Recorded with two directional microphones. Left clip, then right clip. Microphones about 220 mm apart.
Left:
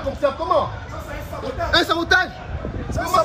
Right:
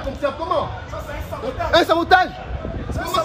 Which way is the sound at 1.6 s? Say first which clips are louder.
Right 3 dB; 30° right (ahead or behind).